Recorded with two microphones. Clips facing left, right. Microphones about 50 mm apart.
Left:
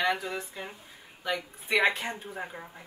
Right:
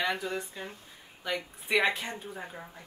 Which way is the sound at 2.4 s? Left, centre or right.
Centre.